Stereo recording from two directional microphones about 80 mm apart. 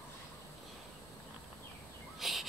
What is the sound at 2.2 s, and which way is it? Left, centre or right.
Bird, centre.